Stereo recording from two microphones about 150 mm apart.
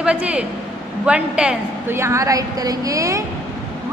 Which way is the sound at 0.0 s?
10° right (ahead or behind).